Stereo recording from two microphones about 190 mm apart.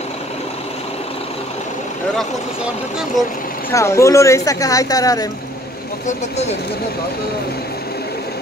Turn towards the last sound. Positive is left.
turn(degrees=35)  # may be behind; listen again after turning